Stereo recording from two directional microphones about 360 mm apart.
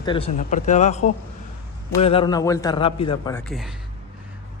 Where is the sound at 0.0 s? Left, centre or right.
Centre.